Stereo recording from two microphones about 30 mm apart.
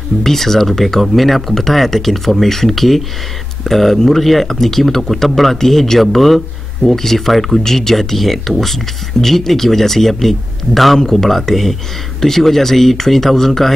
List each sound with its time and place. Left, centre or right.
0.2 s speech: centre
11.0 s speech: centre
11.2 s speech: centre